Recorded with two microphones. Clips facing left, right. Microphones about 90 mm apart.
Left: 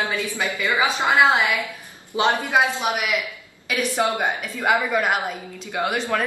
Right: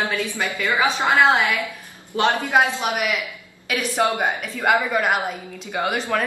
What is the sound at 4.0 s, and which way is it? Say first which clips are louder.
Speech: right 3 dB; 15° right (ahead or behind).